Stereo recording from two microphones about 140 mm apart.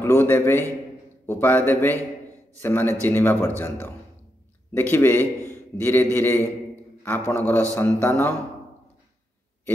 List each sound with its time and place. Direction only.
0.0 s speech: 15° left (ahead or behind)
4.7 s a man's voice: 15° left (ahead or behind)